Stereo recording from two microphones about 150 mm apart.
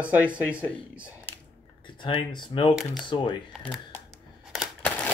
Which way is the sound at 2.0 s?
30° left (ahead or behind).